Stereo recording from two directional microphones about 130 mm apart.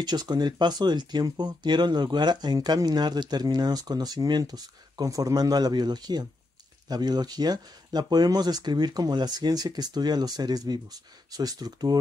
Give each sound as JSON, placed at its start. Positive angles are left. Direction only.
{"t": 0.0, "sound": "speech", "side_deg": -30}